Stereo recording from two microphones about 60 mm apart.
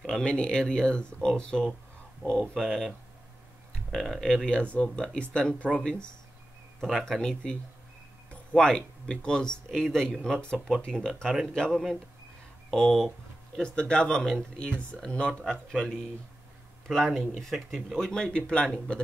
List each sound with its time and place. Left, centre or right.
0.0 s speech: centre
2.3 s speech: centre
3.9 s speech: centre
4.5 s speech: centre
11.7 s speech: centre
13.6 s speech: centre